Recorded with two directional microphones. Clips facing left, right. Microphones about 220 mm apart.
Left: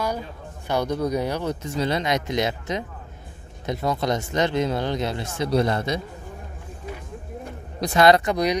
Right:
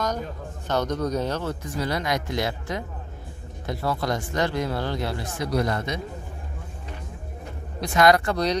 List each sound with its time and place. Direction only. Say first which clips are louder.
0.7 s speech: left 1 dB; 10° left (ahead or behind); by 5.9 s 30° left (ahead or behind)
7.8 s speech: left 2 dB; 30° left (ahead or behind); by 8.5 s 15° left (ahead or behind)